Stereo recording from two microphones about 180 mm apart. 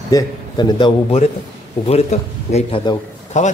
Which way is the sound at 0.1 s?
25° left (ahead or behind).